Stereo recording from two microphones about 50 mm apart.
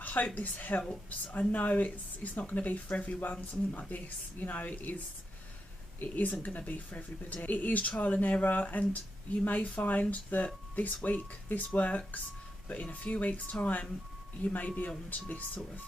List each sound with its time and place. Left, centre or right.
0.0 s speech: left
6.0 s speech: left